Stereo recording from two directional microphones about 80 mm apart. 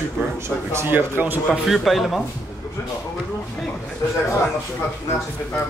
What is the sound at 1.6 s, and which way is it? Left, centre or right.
Speech, centre.